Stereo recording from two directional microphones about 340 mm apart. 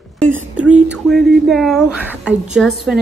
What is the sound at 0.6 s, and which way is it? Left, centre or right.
A woman's voice, centre.